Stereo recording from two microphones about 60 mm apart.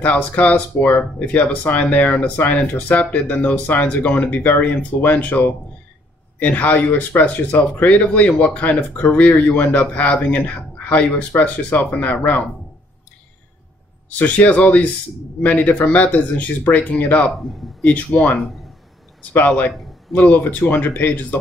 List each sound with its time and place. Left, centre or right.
0.0 s speech: left
14.0 s speech: left
19.3 s speech: left